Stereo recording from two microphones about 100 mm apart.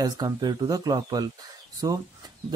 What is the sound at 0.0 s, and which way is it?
Speech, 45° right (ahead or behind).